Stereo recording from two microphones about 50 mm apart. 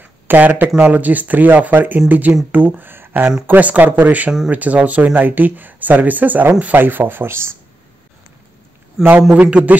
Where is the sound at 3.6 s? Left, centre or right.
Right.